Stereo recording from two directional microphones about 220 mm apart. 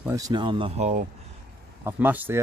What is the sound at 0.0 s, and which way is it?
Speech, 15° right (ahead or behind).